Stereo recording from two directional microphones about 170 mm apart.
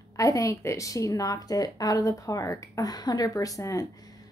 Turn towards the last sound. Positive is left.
turn(degrees=20)  # may be behind; listen again after turning